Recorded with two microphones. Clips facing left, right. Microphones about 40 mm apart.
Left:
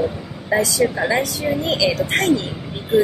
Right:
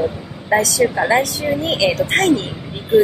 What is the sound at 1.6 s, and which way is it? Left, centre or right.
Speech, right.